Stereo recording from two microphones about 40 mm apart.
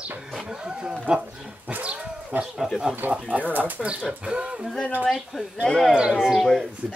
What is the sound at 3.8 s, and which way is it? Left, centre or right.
Speech, right.